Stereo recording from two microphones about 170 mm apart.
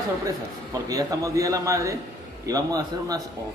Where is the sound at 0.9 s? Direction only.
20° right (ahead or behind).